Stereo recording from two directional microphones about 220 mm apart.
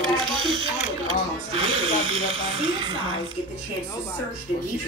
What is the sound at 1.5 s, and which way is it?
Speech, 25° right (ahead or behind).